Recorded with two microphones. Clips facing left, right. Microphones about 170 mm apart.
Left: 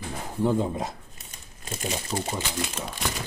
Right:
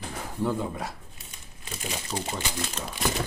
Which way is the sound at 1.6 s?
45° left (ahead or behind).